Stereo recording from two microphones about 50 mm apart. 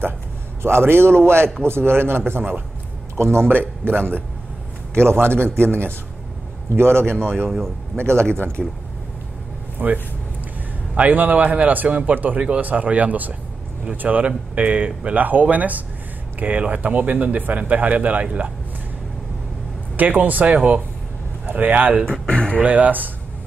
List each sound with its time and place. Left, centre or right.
0.6 s a man's voice: right
7.2 s a man's voice: centre
7.9 s a man's voice: right
9.8 s a man's voice: right
11.0 s a man's voice: right
20.0 s a man's voice: right
22.0 s a sound: centre
22.6 s a man's voice: right